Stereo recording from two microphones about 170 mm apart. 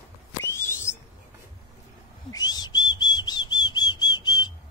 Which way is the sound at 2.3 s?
25° left (ahead or behind).